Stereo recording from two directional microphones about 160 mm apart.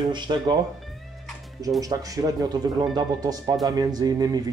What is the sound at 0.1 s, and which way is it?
Speech, 30° right (ahead or behind).